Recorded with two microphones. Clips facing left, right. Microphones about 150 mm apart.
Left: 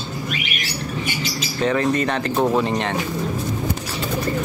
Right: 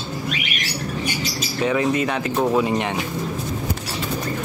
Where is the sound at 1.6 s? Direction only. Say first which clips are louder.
Left 1 dB; 10° right (ahead or behind).